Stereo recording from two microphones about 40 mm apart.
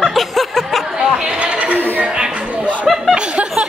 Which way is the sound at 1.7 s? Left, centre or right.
Right.